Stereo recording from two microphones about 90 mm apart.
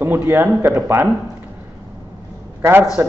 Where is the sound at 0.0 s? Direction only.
25° right (ahead or behind).